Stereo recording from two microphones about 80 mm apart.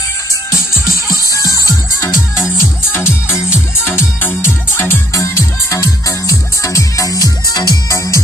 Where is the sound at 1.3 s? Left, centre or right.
Left.